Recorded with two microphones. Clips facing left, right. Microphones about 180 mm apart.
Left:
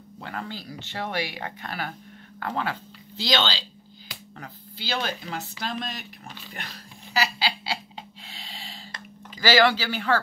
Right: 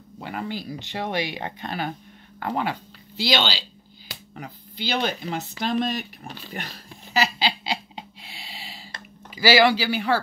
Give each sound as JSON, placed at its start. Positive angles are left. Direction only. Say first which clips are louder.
{"t": 0.2, "sound": "speech", "louder": "right 4 dB", "side_deg": -15}
{"t": 7.2, "sound": "laughter", "louder": "right 3 dB", "side_deg": -20}
{"t": 9.3, "sound": "speech", "louder": "right 2 dB", "side_deg": -10}